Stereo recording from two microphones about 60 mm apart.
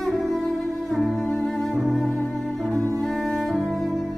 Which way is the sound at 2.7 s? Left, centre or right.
Right.